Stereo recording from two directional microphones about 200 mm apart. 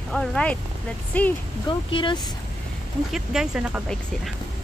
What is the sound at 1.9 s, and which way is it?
Speech, 25° left (ahead or behind).